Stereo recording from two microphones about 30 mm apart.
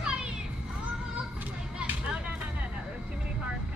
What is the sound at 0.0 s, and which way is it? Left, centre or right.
Children playing, right.